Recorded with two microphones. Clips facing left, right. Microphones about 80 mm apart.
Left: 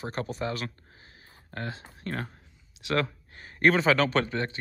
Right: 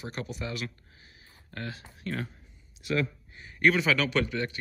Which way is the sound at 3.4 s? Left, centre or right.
Left.